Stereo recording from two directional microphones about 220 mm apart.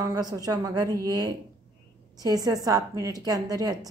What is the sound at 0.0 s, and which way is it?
A woman's voice, 15° right (ahead or behind).